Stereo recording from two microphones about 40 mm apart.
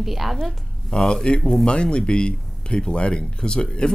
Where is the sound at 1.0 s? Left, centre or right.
Centre.